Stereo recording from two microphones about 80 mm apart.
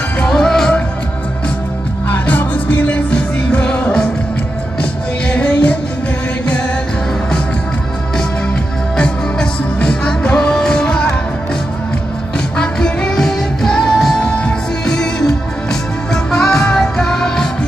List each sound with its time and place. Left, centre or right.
0.2 s music: centre
2.0 s music: left
5.3 s music: centre
8.9 s music: centre
12.5 s music: centre